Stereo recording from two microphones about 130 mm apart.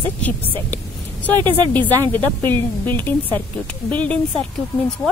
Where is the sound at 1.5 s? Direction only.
15° left (ahead or behind).